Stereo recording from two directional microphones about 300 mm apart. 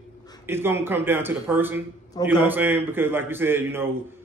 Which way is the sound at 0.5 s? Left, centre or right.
Centre.